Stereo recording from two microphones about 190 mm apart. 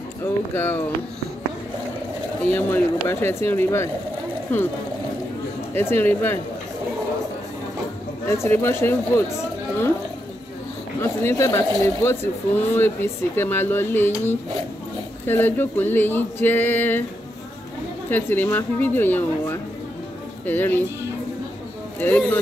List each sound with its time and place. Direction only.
0.2 s speech: 10° left (ahead or behind)
2.4 s speech: 10° left (ahead or behind)
5.8 s speech: 10° left (ahead or behind)
8.3 s speech: 15° left (ahead or behind)
11.0 s speech: 15° left (ahead or behind)
18.1 s speech: 10° left (ahead or behind)
22.0 s speech: 10° left (ahead or behind)